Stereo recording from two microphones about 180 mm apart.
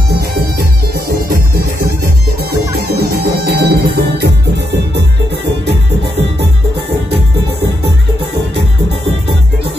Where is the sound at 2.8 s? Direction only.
60° right (ahead or behind).